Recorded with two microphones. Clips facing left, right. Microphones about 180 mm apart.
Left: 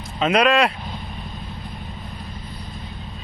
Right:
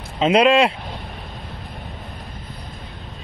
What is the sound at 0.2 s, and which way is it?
Speech, 25° right (ahead or behind).